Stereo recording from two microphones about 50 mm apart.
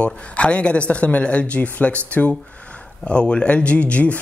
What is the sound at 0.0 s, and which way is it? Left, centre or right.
Speech, left.